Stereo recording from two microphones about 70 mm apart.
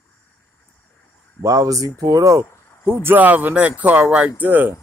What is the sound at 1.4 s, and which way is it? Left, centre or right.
Speech, right.